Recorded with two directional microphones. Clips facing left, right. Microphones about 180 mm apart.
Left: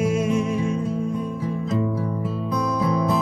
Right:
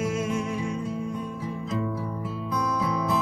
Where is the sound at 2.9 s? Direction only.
40° left (ahead or behind).